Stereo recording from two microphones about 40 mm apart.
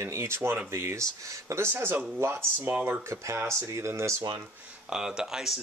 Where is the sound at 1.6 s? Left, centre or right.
Right.